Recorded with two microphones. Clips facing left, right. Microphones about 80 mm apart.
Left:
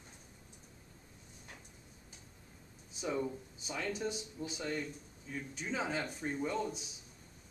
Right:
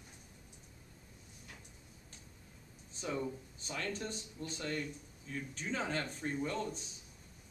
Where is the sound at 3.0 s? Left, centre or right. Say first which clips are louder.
Left 2 dB; centre.